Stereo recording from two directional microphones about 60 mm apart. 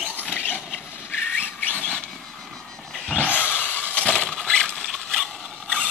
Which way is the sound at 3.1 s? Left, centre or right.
Left.